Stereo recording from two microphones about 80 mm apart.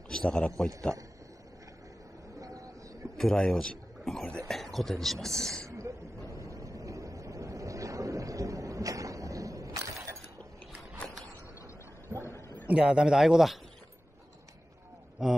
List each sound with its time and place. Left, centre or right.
0.1 s a man's voice: centre
3.2 s speech: centre
5.7 s a sound: right
12.1 s a sound: centre
12.6 s speech: centre
15.2 s speech: centre